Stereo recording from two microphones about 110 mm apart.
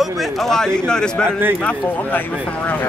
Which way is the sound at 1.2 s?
20° right (ahead or behind).